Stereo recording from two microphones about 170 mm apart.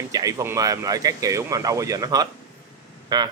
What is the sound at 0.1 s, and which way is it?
Speech, 20° right (ahead or behind).